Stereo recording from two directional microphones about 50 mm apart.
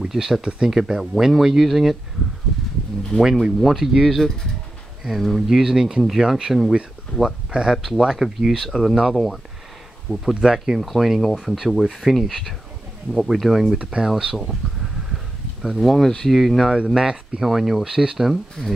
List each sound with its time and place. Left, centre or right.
0.0 s speech: centre
3.2 s speech: centre
5.6 s speech: centre
10.4 s speech: centre
15.8 s speech: centre
16.7 s speech: centre
18.2 s speech: centre